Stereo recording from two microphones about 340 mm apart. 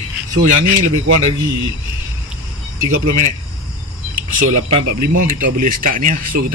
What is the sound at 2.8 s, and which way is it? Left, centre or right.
Speech, right.